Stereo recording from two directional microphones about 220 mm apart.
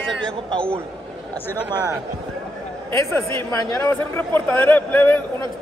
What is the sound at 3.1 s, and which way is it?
A man's voice, 10° left (ahead or behind).